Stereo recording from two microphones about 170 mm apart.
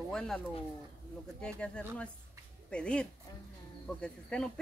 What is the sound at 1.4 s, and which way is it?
Speech, 5° left (ahead or behind).